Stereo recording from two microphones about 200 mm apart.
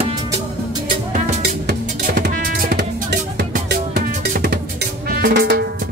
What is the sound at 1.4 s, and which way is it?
Music, 50° right (ahead or behind).